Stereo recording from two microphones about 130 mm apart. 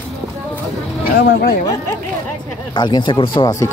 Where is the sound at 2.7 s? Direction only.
35° left (ahead or behind).